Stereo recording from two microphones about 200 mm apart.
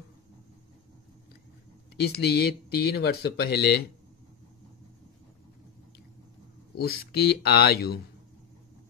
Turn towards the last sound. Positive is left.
turn(degrees=50)  # may be behind; listen again after turning